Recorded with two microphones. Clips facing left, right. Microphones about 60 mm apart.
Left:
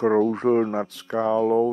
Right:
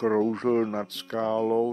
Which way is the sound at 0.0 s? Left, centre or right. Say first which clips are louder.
Left 4 dB; centre.